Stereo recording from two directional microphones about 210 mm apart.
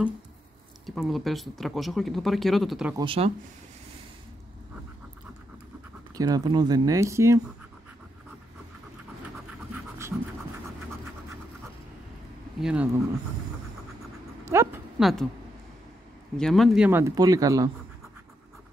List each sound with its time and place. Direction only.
0.8 s speech: centre (ahead or behind)
3.0 s speech: 25° right (ahead or behind)
6.1 s speech: 20° right (ahead or behind)
12.5 s speech: 5° right (ahead or behind)
14.4 s dog: 10° right (ahead or behind)
15.0 s speech: centre (ahead or behind)
16.3 s speech: centre (ahead or behind); by 17.6 s 15° right (ahead or behind)